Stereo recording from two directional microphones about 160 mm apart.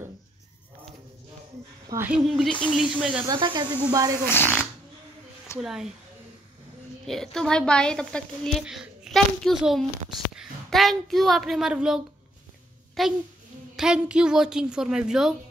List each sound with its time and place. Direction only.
2.0 s a woman's voice: centre (ahead or behind)
3.3 s speech: 30° right (ahead or behind)
4.3 s speech: 15° left (ahead or behind)
5.6 s a woman's voice: 5° right (ahead or behind)
7.1 s a woman's voice: 5° left (ahead or behind)